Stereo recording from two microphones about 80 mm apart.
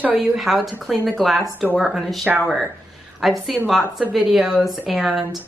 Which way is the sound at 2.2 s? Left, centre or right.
Right.